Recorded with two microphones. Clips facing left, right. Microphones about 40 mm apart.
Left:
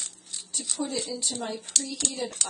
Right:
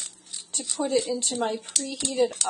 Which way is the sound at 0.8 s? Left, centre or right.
Right.